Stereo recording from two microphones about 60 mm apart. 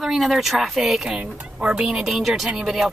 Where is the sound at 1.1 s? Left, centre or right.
Centre.